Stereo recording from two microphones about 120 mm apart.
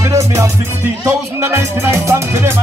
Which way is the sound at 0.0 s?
25° right (ahead or behind).